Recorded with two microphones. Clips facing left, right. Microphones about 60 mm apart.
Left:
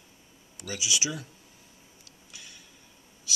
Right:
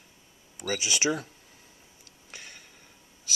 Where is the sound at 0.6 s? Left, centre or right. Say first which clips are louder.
Right 4 dB; right.